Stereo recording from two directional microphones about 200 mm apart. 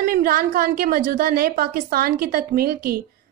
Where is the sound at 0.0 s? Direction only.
45° right (ahead or behind).